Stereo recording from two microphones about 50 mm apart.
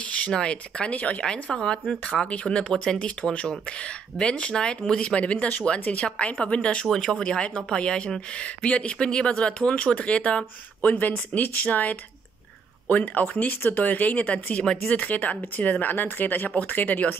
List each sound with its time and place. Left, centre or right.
0.3 s speech: centre
10.8 s speech: left